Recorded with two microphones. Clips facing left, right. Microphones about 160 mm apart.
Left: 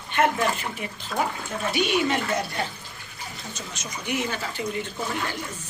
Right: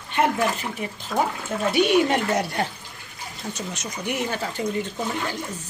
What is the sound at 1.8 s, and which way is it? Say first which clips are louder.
Speech: right 5 dB; 55° right (ahead or behind).